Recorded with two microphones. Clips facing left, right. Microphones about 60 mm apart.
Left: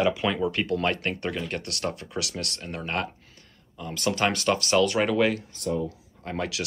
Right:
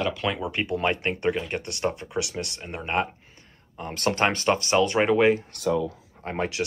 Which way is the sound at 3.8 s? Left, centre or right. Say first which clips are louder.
Right 2 dB; right.